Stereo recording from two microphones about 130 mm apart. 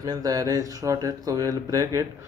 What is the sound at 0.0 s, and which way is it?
Speech, 30° right (ahead or behind).